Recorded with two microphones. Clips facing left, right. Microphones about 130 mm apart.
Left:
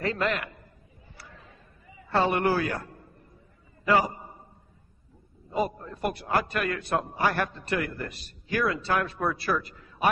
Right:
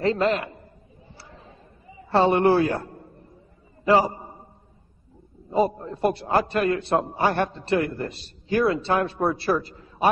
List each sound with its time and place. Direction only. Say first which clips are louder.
0.0 s a man's voice: right 6 dB; 30° right (ahead or behind)
1.0 s a sound: right 3 dB; 30° right (ahead or behind)
5.5 s a man's voice: right 6 dB; 25° right (ahead or behind)